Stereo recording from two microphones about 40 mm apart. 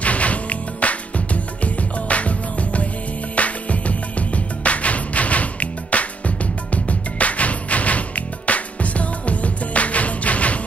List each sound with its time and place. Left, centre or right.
0.0 s music: left